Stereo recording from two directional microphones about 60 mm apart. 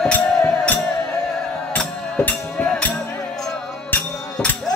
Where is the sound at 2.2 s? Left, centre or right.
Left.